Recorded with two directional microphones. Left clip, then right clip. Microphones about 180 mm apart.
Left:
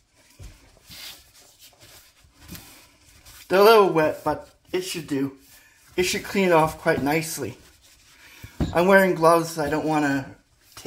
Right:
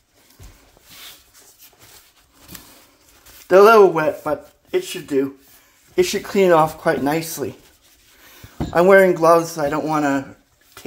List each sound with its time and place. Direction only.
3.4 s speech: 30° right (ahead or behind)
5.9 s speech: 30° right (ahead or behind)
8.7 s a man's voice: 35° right (ahead or behind)